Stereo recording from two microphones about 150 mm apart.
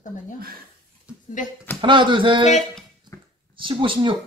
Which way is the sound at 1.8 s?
35° right (ahead or behind).